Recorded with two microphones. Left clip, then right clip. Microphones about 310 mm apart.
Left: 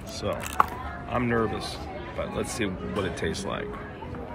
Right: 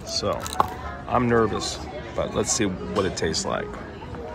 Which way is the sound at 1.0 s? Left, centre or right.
Centre.